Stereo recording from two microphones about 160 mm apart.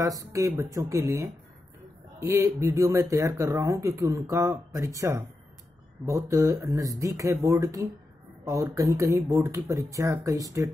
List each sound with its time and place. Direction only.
0.0 s speech: 20° right (ahead or behind)